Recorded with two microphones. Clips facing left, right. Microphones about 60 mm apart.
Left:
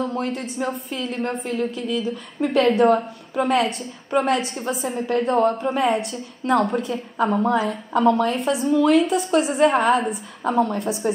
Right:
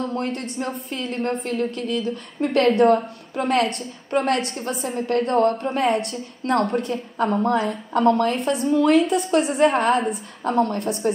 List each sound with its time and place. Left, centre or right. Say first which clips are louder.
0.0 s a woman's voice: left 1 dB; centre